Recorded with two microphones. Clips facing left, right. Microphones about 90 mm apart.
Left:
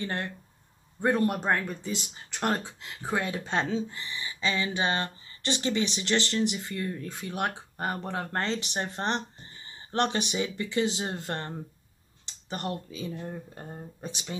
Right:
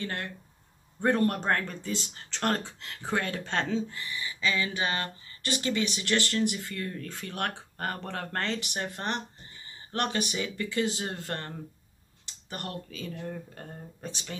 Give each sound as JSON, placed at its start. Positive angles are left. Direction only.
{"t": 0.0, "sound": "speech", "side_deg": 25}
{"t": 1.0, "sound": "speech", "side_deg": 10}